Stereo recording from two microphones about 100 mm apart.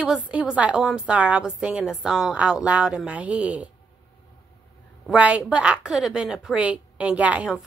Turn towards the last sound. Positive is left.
turn(degrees=-10)  # may be behind; listen again after turning